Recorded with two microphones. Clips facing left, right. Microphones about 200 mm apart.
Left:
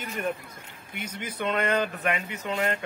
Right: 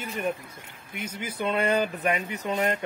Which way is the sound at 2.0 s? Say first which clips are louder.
Right 2 dB; 35° right (ahead or behind).